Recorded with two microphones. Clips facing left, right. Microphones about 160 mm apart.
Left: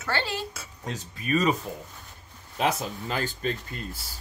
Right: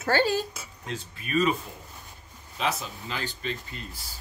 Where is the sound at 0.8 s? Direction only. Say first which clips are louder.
Left 4 dB; 40° left (ahead or behind).